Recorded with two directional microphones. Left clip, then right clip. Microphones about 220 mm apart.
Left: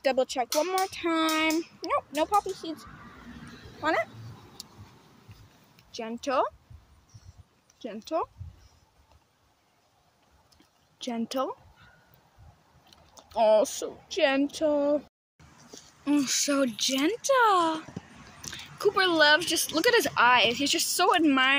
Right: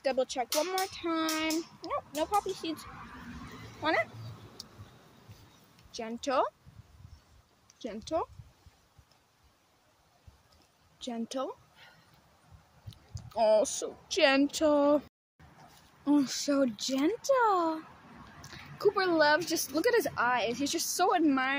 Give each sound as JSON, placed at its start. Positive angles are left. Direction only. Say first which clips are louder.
{"t": 0.0, "sound": "speech", "louder": "left 4 dB", "side_deg": 15}
{"t": 3.8, "sound": "speech", "louder": "left 2 dB", "side_deg": 5}
{"t": 4.6, "sound": "tick", "louder": "left 2 dB", "side_deg": 5}
{"t": 5.9, "sound": "speech", "louder": "left 3 dB", "side_deg": 10}
{"t": 7.8, "sound": "speech", "louder": "left 3 dB", "side_deg": 0}
{"t": 11.0, "sound": "speech", "louder": "left 5 dB", "side_deg": 10}
{"t": 12.9, "sound": "speech", "louder": "left 5 dB", "side_deg": 10}
{"t": 16.0, "sound": "speech", "louder": "left 2 dB", "side_deg": -10}
{"t": 18.8, "sound": "speech", "louder": "left 4 dB", "side_deg": -5}